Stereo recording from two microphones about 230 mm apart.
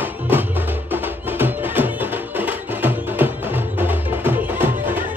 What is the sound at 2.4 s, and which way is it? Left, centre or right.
Music, centre.